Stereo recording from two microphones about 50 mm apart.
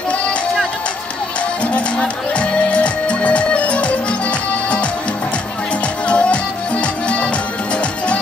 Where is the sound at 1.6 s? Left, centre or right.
Left.